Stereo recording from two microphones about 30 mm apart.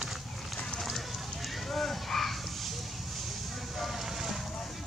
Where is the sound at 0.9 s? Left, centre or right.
Centre.